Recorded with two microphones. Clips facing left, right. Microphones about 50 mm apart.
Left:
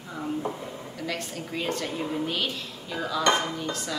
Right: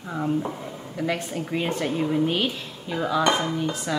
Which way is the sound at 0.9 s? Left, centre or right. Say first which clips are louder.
Right 7 dB; centre.